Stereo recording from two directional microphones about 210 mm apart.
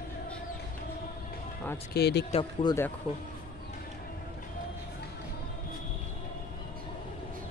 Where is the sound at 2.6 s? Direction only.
20° left (ahead or behind).